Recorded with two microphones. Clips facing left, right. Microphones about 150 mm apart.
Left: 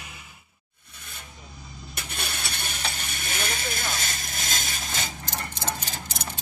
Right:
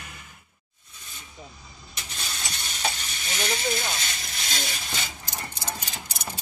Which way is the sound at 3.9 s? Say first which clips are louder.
Left 2 dB; 50° left (ahead or behind).